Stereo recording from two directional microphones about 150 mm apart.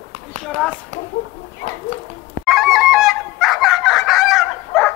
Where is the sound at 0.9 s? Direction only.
55° right (ahead or behind).